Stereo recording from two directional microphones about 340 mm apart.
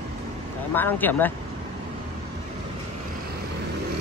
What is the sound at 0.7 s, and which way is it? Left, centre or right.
Speech, centre.